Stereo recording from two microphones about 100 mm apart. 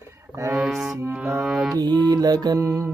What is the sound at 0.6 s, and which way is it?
Music, 5° right (ahead or behind).